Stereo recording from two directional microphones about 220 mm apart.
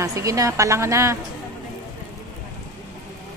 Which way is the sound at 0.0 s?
15° right (ahead or behind).